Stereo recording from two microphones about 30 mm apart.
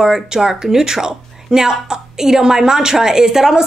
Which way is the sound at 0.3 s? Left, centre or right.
Centre.